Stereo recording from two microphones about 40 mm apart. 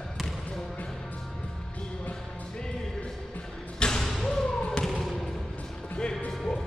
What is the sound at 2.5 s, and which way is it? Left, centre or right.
Music, left.